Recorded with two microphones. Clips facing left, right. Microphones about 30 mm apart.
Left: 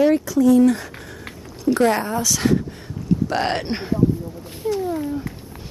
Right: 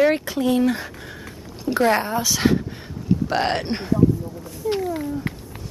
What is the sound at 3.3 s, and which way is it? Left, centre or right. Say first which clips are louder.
Speech: even; centre.